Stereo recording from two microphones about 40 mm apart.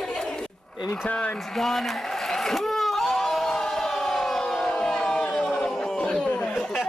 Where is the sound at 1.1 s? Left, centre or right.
Left.